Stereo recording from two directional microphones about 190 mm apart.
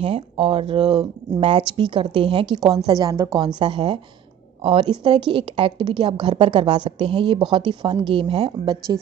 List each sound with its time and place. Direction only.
0.0 s a woman's voice: 30° right (ahead or behind)